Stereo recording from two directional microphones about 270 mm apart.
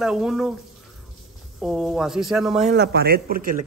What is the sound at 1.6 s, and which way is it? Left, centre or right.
Speech, centre.